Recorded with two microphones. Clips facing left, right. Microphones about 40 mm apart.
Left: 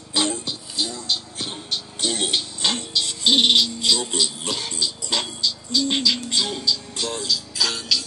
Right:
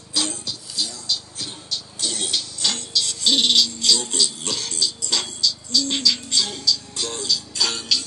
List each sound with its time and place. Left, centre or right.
0.1 s music: left
7.1 s music: centre